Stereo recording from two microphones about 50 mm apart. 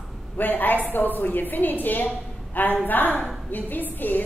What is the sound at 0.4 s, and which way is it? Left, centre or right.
A woman's voice, left.